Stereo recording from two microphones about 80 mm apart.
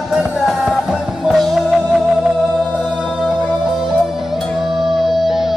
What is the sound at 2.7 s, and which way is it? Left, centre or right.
Music, centre.